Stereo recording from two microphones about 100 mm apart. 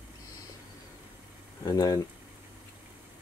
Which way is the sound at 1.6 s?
40° left (ahead or behind).